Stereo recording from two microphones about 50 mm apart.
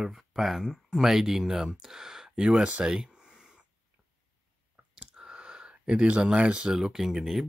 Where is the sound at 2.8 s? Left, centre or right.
Centre.